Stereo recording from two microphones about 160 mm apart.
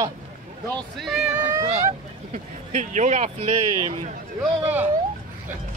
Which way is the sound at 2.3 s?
50° right (ahead or behind).